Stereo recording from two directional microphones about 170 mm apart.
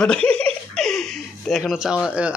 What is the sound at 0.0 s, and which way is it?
Speech, 5° left (ahead or behind).